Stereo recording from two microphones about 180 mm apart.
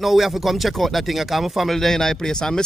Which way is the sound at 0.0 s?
Centre (ahead or behind).